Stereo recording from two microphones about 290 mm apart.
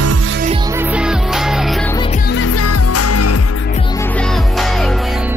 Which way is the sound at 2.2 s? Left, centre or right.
Left.